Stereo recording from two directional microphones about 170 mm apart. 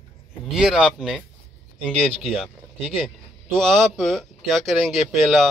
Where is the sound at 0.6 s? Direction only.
5° right (ahead or behind).